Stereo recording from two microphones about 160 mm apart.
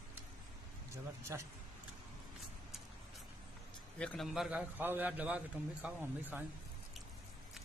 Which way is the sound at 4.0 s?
5° left (ahead or behind).